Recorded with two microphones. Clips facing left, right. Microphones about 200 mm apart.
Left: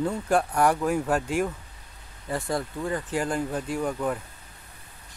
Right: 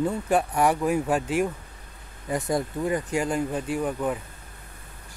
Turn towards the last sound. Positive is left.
turn(degrees=-5)  # may be behind; listen again after turning